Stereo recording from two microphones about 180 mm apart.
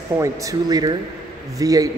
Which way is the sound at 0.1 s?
15° right (ahead or behind).